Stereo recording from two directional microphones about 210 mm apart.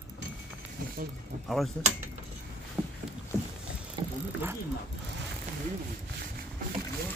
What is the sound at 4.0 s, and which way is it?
Vehicle, 20° right (ahead or behind).